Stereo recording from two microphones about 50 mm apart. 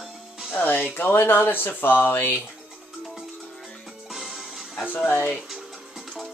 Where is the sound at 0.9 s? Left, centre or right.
Left.